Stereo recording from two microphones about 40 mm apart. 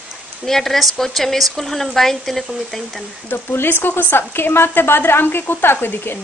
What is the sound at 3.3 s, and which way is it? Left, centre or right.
A woman's voice, left.